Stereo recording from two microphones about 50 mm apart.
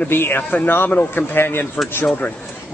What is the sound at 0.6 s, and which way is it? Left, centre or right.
Speech, left.